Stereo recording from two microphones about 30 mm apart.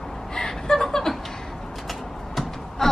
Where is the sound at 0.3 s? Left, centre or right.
Centre.